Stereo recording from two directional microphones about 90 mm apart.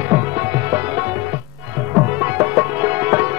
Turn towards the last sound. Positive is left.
turn(degrees=-25)  # may be behind; listen again after turning